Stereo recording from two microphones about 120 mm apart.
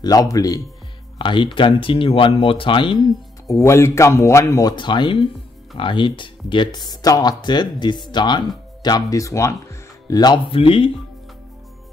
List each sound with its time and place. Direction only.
0.0 s a man's voice: 30° left (ahead or behind)
1.1 s speech: 40° left (ahead or behind)
3.4 s a man's voice: 25° left (ahead or behind)
4.7 s a man's voice: 40° left (ahead or behind)
10.5 s speech: 50° left (ahead or behind)